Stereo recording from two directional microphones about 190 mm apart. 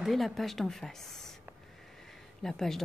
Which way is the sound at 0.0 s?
Centre (ahead or behind).